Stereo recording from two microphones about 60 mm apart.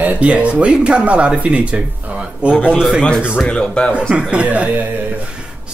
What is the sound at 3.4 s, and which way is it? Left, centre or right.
Speech, centre.